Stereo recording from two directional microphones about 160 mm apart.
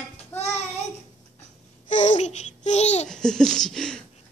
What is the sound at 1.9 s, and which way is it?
Babbling, 50° left (ahead or behind).